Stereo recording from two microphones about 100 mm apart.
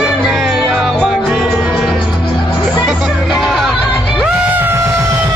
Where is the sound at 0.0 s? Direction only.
Centre (ahead or behind).